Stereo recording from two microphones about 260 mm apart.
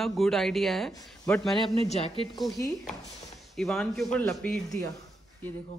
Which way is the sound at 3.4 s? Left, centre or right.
Centre.